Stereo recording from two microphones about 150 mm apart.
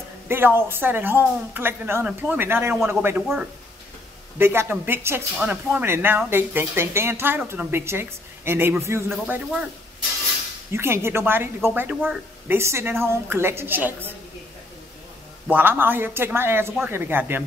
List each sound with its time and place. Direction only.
0.3 s a woman's voice: 15° right (ahead or behind)
4.4 s a woman's voice: 15° right (ahead or behind)
9.1 s speech: 5° right (ahead or behind)
10.7 s a woman's voice: 15° right (ahead or behind)
15.5 s a woman's voice: 15° right (ahead or behind)